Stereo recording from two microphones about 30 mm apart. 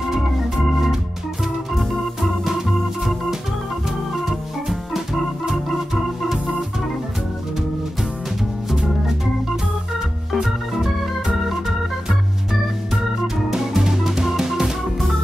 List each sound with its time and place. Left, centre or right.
4.3 s organ: centre
10.3 s organ: centre
13.6 s music: centre